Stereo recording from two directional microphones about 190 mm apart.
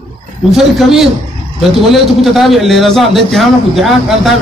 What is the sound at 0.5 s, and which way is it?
A man's voice, centre (ahead or behind).